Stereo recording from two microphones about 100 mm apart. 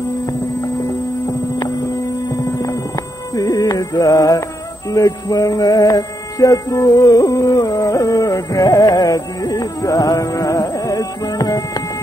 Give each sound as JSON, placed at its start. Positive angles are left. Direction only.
{"t": 3.3, "sound": "music", "side_deg": 40}